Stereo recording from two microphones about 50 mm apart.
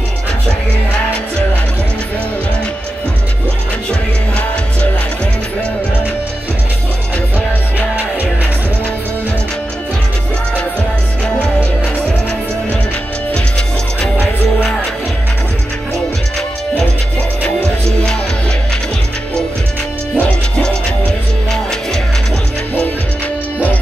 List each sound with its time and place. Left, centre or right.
20.2 s music: left